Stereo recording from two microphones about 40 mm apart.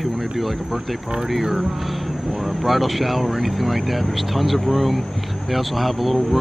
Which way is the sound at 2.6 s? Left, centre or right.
Centre.